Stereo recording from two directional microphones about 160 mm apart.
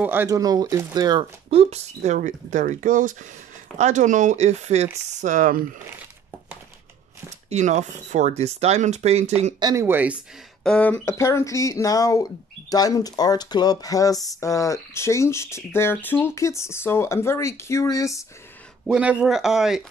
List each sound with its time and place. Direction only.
0.0 s speech: 10° right (ahead or behind); by 2.1 s 40° right (ahead or behind)
2.1 s speech: 55° right (ahead or behind)
7.4 s speech: 45° right (ahead or behind)
9.6 s speech: 25° right (ahead or behind)
9.8 s speech: 10° right (ahead or behind)
10.6 s speech: 5° left (ahead or behind)
18.9 s speech: 5° right (ahead or behind)